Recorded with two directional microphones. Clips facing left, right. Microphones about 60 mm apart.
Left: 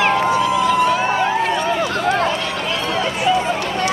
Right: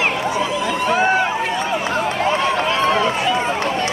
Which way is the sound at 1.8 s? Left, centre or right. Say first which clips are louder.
Left 1 dB; right.